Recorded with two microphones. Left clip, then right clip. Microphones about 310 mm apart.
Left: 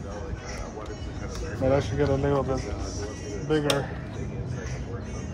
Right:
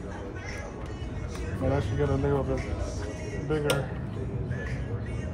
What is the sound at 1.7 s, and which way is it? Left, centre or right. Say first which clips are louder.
Speech: left 5 dB; left.